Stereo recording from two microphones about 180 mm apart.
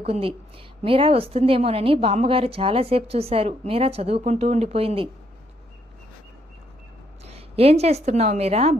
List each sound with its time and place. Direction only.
0.0 s a woman's voice: 35° right (ahead or behind)
7.2 s a woman's voice: 35° right (ahead or behind)